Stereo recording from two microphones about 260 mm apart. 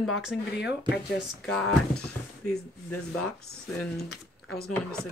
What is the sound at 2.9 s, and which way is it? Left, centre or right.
Speech, left.